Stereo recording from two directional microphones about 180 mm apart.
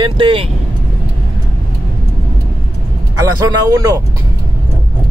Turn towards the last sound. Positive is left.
turn(degrees=-20)  # may be behind; listen again after turning